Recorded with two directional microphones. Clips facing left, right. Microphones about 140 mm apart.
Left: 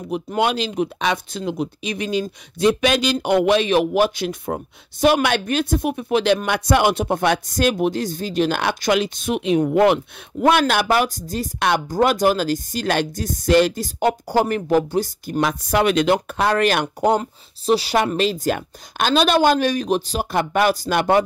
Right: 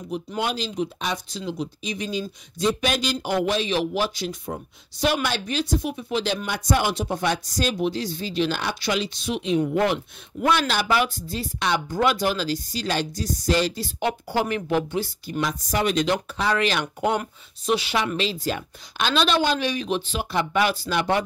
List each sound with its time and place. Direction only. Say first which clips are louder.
0.1 s speech: left 6 dB; 65° left (ahead or behind)
2.6 s speech: left 6 dB; 80° left; by 15.4 s 40° left (ahead or behind)
15.4 s speech: left 6 dB; 65° left (ahead or behind)
16.8 s speech: left 5 dB; 35° left (ahead or behind)
17.9 s speech: left 6 dB; 50° left (ahead or behind)